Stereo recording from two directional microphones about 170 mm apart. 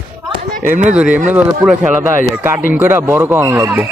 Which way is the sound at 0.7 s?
10° right (ahead or behind).